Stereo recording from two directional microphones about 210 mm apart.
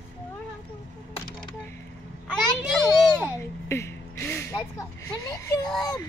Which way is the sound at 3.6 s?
15° left (ahead or behind).